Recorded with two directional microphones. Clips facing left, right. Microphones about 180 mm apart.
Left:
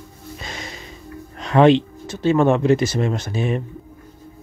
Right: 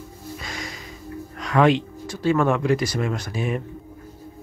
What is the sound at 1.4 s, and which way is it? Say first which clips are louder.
Speech: left 5 dB; 25° left (ahead or behind).